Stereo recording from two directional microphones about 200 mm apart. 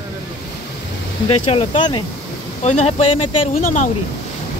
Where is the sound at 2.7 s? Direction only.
35° left (ahead or behind).